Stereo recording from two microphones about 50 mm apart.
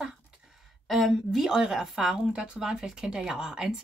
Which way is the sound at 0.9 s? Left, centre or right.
Centre.